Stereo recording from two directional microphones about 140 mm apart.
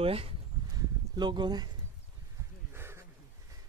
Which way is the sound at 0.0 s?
45° right (ahead or behind).